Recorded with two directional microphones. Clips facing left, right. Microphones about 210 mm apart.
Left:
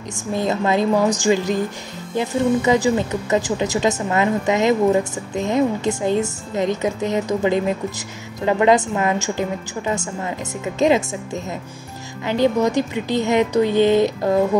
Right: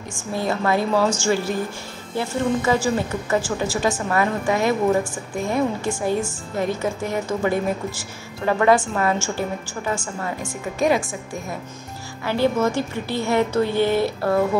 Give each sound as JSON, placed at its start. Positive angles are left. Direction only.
{"t": 0.3, "sound": "a woman's voice", "side_deg": 20}
{"t": 12.3, "sound": "a woman's voice", "side_deg": 15}